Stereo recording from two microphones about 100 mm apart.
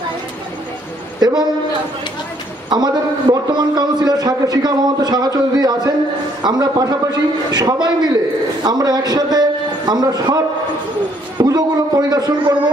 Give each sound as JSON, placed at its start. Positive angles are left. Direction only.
{"t": 2.7, "sound": "a man's voice", "side_deg": -45}